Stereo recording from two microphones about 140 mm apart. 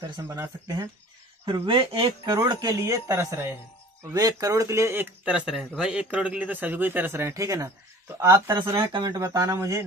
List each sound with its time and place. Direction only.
0.2 s speech: 25° right (ahead or behind)
1.4 s speech: 35° right (ahead or behind); by 5.0 s 20° right (ahead or behind)
5.2 s speech: 5° right (ahead or behind)
8.8 s speech: 30° right (ahead or behind)